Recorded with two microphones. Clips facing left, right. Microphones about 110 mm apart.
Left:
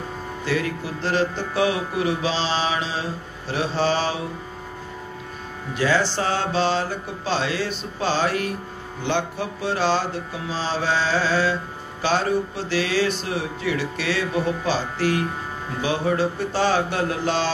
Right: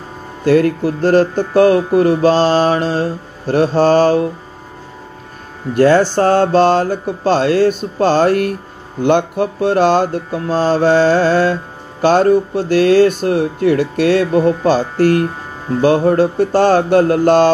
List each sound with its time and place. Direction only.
0.5 s speech: 50° right (ahead or behind)
5.8 s speech: 50° right (ahead or behind)